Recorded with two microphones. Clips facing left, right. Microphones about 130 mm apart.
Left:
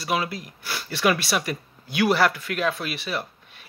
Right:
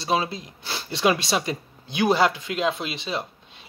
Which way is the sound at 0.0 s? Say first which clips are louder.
Right 2 dB; 25° right (ahead or behind).